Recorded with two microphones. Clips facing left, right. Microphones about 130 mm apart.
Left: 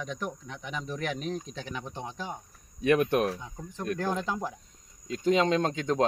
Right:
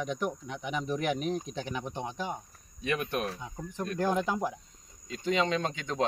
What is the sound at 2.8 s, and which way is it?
Speech, 55° left (ahead or behind).